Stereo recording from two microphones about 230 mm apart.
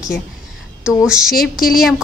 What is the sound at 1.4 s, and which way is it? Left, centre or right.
Speech, left.